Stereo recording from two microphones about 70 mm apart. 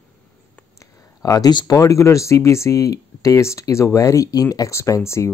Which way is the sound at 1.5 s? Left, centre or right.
Left.